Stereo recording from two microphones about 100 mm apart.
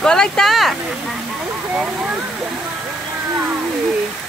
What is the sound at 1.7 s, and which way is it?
Speech, 15° right (ahead or behind).